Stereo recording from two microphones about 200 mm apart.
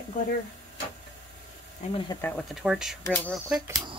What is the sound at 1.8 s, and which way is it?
Speech, 35° left (ahead or behind).